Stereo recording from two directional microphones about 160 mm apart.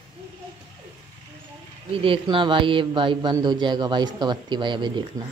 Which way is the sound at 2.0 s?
35° right (ahead or behind).